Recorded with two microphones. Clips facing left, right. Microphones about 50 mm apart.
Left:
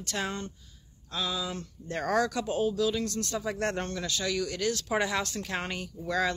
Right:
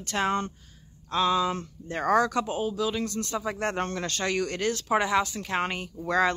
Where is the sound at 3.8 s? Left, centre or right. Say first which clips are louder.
Right 3 dB; right.